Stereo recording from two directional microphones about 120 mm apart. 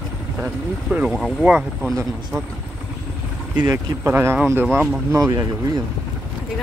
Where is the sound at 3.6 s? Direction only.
20° right (ahead or behind).